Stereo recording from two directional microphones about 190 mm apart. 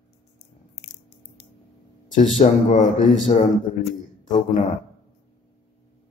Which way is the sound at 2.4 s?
40° left (ahead or behind).